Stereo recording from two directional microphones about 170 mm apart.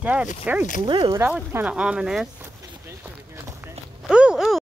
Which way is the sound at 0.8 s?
25° right (ahead or behind).